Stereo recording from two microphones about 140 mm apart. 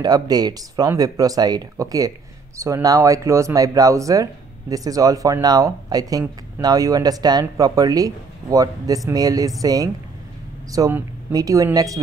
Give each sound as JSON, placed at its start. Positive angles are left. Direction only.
{"t": 0.0, "sound": "speech", "side_deg": -30}